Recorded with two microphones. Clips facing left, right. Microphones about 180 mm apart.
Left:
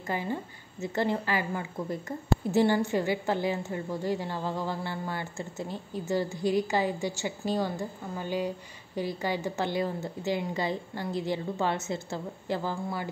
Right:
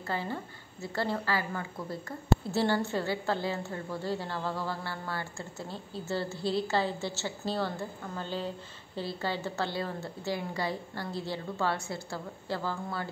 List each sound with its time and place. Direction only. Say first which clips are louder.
0.0 s a woman's voice: left 3 dB; 15° left (ahead or behind)